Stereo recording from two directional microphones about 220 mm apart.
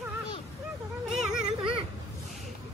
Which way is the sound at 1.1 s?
Centre (ahead or behind).